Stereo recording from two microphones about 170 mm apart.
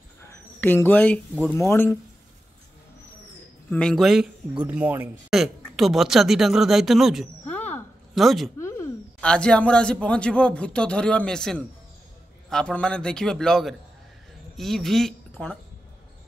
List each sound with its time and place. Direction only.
0.6 s speech: 10° left (ahead or behind)
1.5 s speech: 15° left (ahead or behind)
3.7 s speech: 5° left (ahead or behind)
7.4 s a sound: 10° left (ahead or behind)
8.1 s a woman's voice: centre (ahead or behind)
8.5 s a sound: 15° left (ahead or behind)
9.3 s speech: 5° left (ahead or behind)